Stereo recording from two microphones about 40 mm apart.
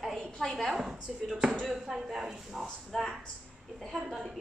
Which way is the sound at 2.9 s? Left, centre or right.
Centre.